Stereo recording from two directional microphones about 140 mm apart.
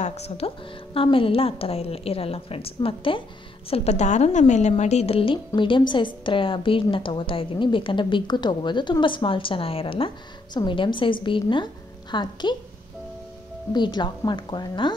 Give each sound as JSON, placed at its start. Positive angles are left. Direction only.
{"t": 0.0, "sound": "speech", "side_deg": 50}
{"t": 0.9, "sound": "a woman's voice", "side_deg": 40}
{"t": 3.7, "sound": "a woman's voice", "side_deg": 50}
{"t": 13.7, "sound": "a woman's voice", "side_deg": 30}